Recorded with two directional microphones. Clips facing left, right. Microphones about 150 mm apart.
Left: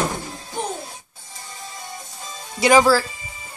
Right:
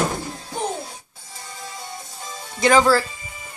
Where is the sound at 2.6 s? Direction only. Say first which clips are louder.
Left 1 dB; 10° left (ahead or behind).